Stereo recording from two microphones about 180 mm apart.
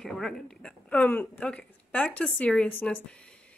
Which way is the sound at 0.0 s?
5° left (ahead or behind).